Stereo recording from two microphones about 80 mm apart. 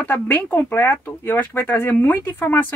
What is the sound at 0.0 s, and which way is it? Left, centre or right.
Speech, left.